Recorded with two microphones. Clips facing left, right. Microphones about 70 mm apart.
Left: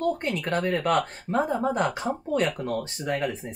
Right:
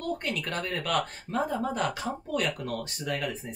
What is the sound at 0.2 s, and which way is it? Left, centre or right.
Speech, left.